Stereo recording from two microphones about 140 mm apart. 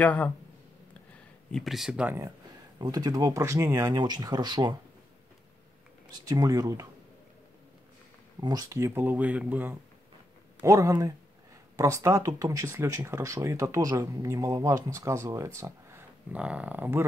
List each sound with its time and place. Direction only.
0.0 s speech: 10° left (ahead or behind)
1.5 s speech: centre (ahead or behind)
2.8 s speech: 30° right (ahead or behind)
6.1 s speech: 25° right (ahead or behind)
8.4 s speech: 30° right (ahead or behind); by 9.8 s 10° right (ahead or behind)
10.6 s speech: 25° right (ahead or behind)